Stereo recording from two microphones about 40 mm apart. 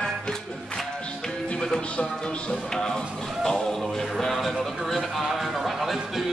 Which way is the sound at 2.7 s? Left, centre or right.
Centre.